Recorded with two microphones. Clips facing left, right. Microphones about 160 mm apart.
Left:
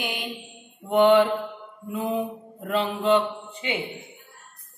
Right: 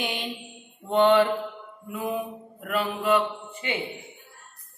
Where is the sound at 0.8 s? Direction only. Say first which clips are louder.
Left 2 dB; 15° left (ahead or behind).